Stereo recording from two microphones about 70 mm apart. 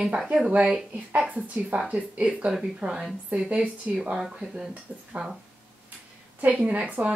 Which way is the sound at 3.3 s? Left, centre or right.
Centre.